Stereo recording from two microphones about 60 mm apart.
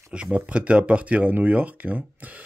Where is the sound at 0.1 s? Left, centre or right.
Centre.